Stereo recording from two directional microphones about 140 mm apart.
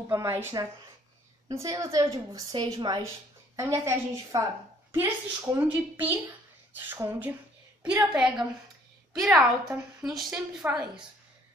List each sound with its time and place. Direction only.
0.1 s a woman's voice: 20° right (ahead or behind)